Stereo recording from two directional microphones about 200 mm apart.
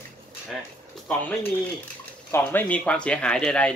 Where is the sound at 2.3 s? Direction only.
10° left (ahead or behind).